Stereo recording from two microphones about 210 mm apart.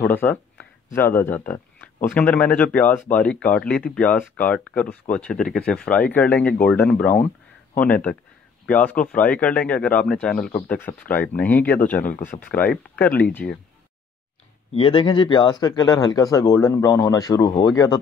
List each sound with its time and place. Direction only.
0.0 s speech: 10° left (ahead or behind)
14.7 s speech: 25° left (ahead or behind)